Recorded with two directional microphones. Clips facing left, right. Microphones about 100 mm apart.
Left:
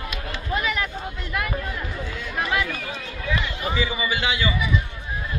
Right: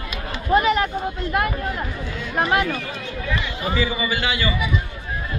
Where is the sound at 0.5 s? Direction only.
45° right (ahead or behind).